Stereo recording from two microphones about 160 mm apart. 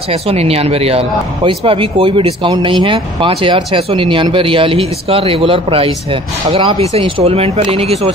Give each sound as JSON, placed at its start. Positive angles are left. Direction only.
{"t": 0.1, "sound": "speech", "side_deg": -40}